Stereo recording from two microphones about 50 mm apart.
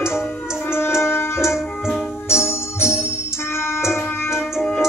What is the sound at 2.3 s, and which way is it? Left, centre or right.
Music, left.